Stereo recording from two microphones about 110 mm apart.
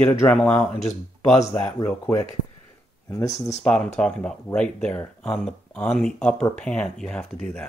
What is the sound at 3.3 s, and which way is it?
Speech, 90° left.